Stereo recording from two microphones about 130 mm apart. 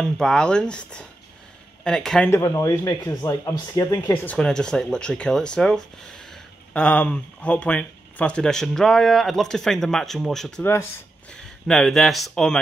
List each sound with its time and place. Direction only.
0.0 s speech: 5° left (ahead or behind)
2.2 s speech: 20° left (ahead or behind)
4.1 s speech: 10° left (ahead or behind)
10.6 s speech: 15° left (ahead or behind)
11.6 s speech: 5° left (ahead or behind)